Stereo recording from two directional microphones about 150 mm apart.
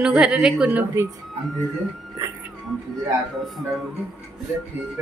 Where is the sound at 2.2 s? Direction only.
20° right (ahead or behind).